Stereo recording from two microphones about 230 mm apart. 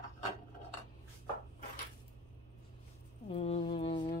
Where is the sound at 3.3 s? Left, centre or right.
Left.